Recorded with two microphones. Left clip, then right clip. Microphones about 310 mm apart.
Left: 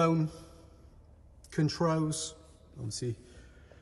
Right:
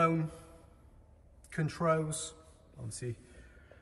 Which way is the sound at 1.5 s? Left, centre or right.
Centre.